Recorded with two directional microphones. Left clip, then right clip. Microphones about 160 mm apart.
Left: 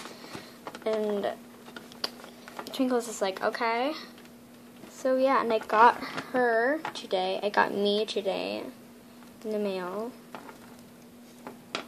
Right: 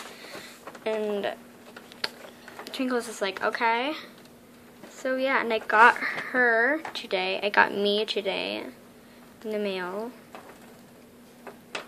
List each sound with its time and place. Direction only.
0.8 s a woman's voice: 15° left (ahead or behind)
2.6 s a woman's voice: 15° left (ahead or behind)
5.0 s a woman's voice: 15° left (ahead or behind)